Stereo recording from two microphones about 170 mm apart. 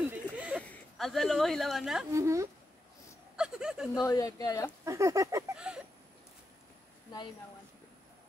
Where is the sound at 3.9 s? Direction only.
20° left (ahead or behind).